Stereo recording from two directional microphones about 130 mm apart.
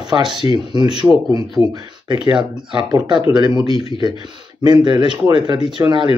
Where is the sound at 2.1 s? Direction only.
35° right (ahead or behind).